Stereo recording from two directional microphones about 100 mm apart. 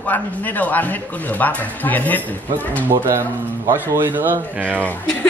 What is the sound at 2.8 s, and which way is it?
Speech, 25° right (ahead or behind).